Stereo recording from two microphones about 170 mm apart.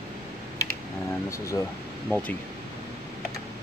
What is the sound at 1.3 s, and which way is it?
Speech, 20° left (ahead or behind).